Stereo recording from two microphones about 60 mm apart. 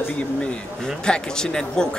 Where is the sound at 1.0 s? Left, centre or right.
Centre.